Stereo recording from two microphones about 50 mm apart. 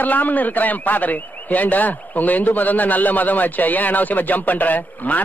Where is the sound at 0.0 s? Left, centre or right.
Left.